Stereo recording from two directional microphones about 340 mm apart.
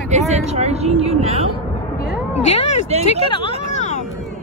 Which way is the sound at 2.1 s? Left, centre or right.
Centre.